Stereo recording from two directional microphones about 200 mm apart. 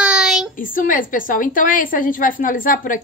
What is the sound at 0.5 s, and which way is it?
A woman's voice, 45° left (ahead or behind).